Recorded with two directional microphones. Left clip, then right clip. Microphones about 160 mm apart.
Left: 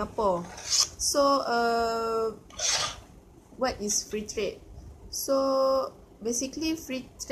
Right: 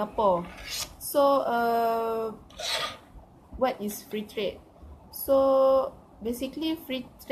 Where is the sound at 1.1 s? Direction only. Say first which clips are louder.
Right 2 dB; centre (ahead or behind).